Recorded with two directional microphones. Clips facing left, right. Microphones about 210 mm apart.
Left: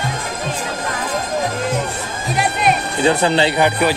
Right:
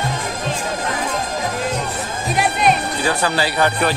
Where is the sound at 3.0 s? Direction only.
25° left (ahead or behind).